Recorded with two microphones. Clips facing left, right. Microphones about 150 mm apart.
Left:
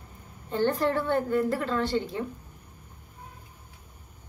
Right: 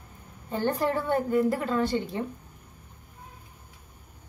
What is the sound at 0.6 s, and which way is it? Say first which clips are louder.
A woman's voice: left 1 dB; 15° right (ahead or behind).